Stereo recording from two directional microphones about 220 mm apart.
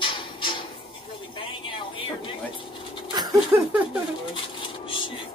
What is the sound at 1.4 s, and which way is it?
Speech, 25° left (ahead or behind).